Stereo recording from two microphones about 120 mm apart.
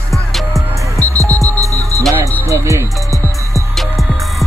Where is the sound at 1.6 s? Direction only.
25° right (ahead or behind).